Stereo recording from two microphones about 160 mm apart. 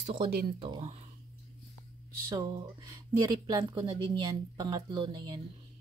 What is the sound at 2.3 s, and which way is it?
Speech, 20° right (ahead or behind).